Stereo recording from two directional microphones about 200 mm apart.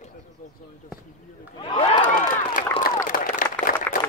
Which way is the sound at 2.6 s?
45° left (ahead or behind).